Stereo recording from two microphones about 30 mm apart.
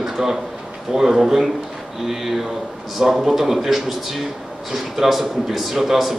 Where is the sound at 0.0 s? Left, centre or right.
Centre.